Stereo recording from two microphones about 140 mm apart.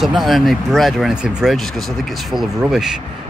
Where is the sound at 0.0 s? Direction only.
Centre (ahead or behind).